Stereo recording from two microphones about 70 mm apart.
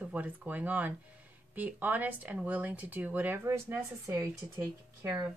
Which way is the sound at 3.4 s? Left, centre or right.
Right.